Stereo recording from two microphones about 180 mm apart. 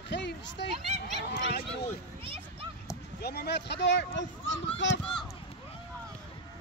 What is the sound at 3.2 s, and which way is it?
Speech, 65° left (ahead or behind).